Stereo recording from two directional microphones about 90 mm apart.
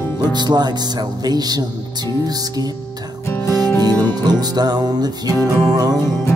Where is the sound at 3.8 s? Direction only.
50° right (ahead or behind).